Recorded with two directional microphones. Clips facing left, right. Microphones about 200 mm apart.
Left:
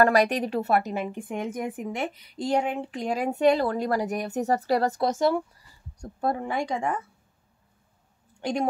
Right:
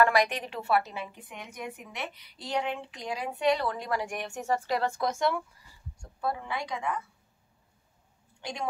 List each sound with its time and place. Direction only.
0.0 s speech: 40° left (ahead or behind)